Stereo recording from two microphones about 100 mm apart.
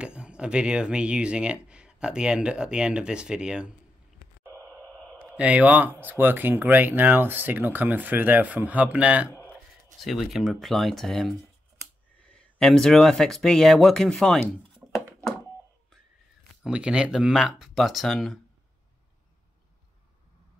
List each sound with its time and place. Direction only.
0.0 s speech: 10° right (ahead or behind)
4.5 s radio: 15° left (ahead or behind)
5.3 s speech: 15° right (ahead or behind)
10.0 s speech: centre (ahead or behind)
14.8 s a sound: 15° right (ahead or behind)
16.6 s speech: 10° right (ahead or behind)